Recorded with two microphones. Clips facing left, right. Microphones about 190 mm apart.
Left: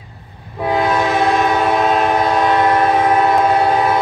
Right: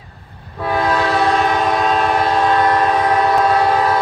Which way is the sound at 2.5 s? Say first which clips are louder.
Left 1 dB; 20° left (ahead or behind).